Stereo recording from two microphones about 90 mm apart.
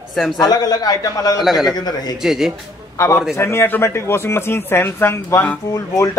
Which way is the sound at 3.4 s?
30° left (ahead or behind).